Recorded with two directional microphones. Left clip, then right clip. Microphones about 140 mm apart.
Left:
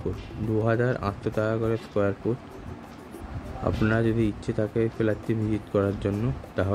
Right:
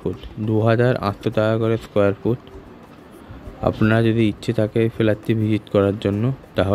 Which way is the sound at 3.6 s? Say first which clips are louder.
Right 7 dB; 50° right (ahead or behind).